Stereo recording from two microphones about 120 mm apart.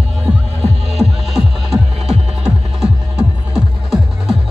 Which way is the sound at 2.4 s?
5° right (ahead or behind).